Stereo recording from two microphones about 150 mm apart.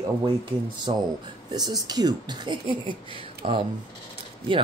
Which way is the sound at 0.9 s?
35° right (ahead or behind).